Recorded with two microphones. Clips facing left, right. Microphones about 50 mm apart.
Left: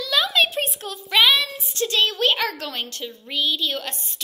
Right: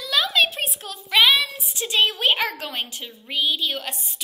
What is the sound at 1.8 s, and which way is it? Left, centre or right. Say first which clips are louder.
A woman's voice: even; centre.